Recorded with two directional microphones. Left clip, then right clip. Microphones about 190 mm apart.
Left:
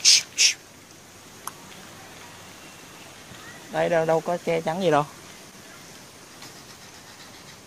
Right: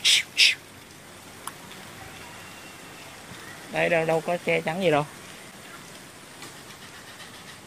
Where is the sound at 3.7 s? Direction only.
20° left (ahead or behind).